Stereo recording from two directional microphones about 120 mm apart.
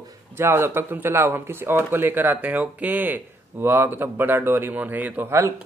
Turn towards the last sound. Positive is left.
turn(degrees=-20)  # may be behind; listen again after turning